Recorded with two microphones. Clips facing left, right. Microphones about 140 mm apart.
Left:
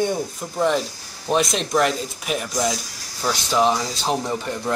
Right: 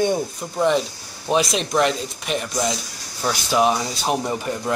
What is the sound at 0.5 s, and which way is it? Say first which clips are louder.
Speech: right 1 dB; centre (ahead or behind).